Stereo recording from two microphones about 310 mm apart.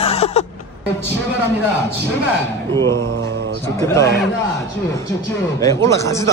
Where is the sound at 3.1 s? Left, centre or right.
Right.